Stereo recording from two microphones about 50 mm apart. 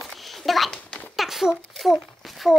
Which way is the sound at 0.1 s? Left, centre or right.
Centre.